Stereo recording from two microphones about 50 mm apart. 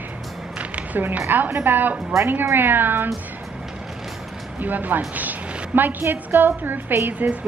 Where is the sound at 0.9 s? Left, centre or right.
Right.